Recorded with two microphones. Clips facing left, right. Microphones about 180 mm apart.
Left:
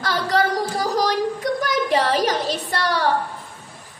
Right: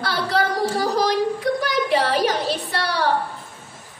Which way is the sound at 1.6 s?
45° left (ahead or behind).